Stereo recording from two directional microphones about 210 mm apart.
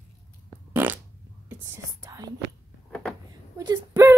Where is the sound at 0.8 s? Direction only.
10° right (ahead or behind).